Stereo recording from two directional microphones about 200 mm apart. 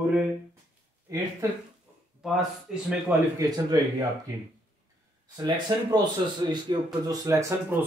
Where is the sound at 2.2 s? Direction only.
Centre (ahead or behind).